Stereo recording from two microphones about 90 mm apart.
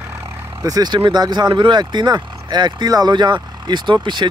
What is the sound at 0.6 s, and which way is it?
Speech, 45° right (ahead or behind).